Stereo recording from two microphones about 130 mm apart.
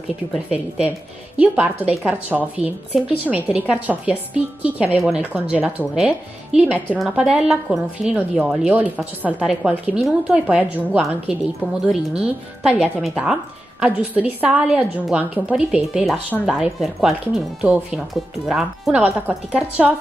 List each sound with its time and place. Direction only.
1.4 s a woman's voice: 10° right (ahead or behind)